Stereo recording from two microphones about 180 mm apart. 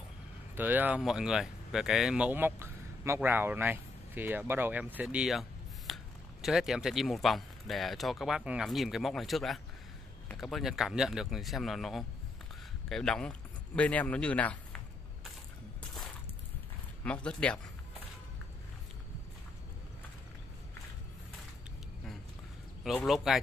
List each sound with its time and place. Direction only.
0.6 s speech: 10° right (ahead or behind); by 14.8 s 5° left (ahead or behind)
17.0 s speech: 5° left (ahead or behind)
22.9 s speech: centre (ahead or behind)